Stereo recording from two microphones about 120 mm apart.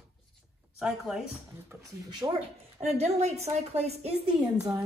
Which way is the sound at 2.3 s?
55° right (ahead or behind).